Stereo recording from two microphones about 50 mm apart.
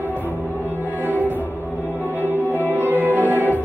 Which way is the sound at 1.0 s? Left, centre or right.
Right.